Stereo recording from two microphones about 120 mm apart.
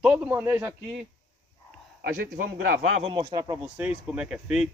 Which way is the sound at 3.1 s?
40° right (ahead or behind).